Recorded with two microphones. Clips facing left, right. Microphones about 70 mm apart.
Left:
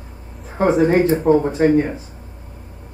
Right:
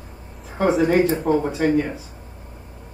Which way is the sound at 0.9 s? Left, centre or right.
Left.